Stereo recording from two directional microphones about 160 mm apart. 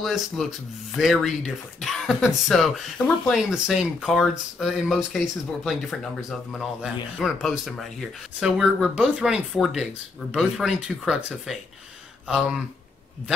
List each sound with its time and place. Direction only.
0.0 s speech: centre (ahead or behind)